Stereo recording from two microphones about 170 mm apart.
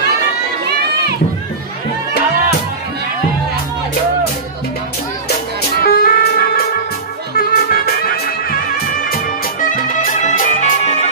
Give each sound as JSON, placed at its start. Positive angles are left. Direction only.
{"t": 5.8, "sound": "music", "side_deg": 60}